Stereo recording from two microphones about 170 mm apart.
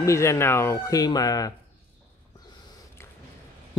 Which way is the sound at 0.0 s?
15° left (ahead or behind).